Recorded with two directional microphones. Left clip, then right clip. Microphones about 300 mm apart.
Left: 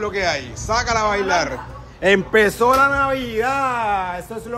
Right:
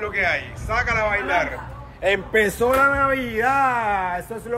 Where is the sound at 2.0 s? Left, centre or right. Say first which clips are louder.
Left 4 dB; left.